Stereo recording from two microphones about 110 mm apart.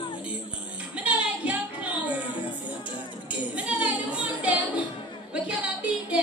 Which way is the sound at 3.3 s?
10° right (ahead or behind).